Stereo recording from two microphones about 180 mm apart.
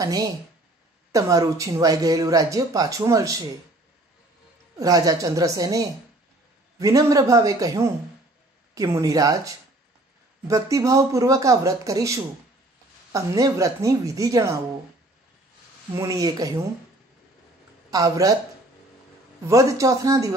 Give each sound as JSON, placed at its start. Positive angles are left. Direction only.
{"t": 0.0, "sound": "speech", "side_deg": -20}
{"t": 4.7, "sound": "a man's voice", "side_deg": -20}
{"t": 16.0, "sound": "speech", "side_deg": -20}
{"t": 17.9, "sound": "speech", "side_deg": -20}
{"t": 19.4, "sound": "speech", "side_deg": -20}